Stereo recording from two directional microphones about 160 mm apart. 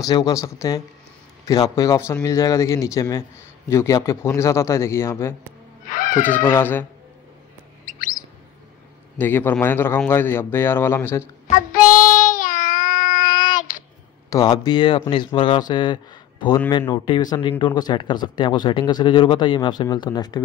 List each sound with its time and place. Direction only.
0.0 s speech: 20° left (ahead or behind)
5.9 s wail: 55° left (ahead or behind)
6.4 s speech: 15° left (ahead or behind)
9.2 s speech: 10° left (ahead or behind)
11.4 s child singing: 60° left (ahead or behind)
14.3 s speech: 25° left (ahead or behind)